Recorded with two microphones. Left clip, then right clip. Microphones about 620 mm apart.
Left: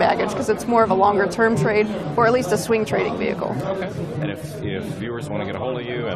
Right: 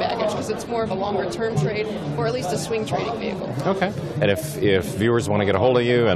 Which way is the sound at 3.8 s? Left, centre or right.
Right.